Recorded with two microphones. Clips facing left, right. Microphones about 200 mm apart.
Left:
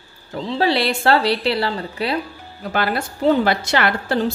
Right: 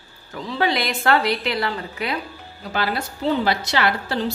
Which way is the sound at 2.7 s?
55° left (ahead or behind).